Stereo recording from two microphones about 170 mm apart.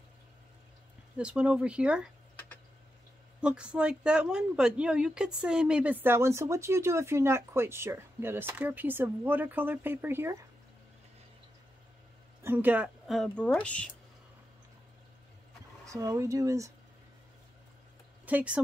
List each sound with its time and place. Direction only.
1.1 s speech: 5° right (ahead or behind)
3.3 s speech: 5° right (ahead or behind)
12.4 s a woman's voice: 10° right (ahead or behind); by 13.8 s 5° left (ahead or behind)
15.9 s speech: 20° right (ahead or behind)
18.2 s speech: 10° right (ahead or behind)